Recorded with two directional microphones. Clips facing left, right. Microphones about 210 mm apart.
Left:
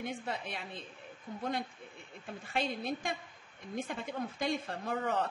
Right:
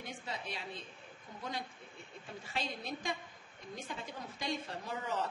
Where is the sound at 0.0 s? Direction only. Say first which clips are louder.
Left 5 dB; 55° left (ahead or behind).